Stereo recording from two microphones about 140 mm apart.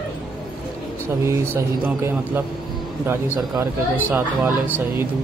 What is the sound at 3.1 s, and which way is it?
Speech, 15° right (ahead or behind).